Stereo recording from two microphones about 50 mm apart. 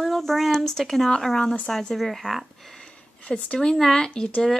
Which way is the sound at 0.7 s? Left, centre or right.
Centre.